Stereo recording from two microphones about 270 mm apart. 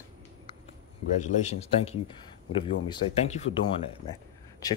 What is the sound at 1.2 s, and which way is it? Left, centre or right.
Speech, left.